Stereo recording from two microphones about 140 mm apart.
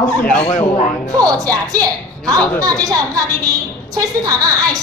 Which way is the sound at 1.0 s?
25° right (ahead or behind).